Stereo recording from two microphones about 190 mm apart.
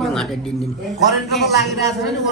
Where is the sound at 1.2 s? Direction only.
60° left (ahead or behind).